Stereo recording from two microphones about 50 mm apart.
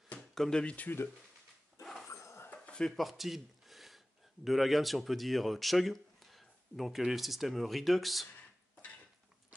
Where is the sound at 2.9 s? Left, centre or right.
Centre.